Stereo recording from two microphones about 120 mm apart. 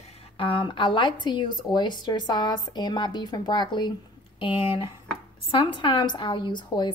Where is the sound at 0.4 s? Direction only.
45° left (ahead or behind).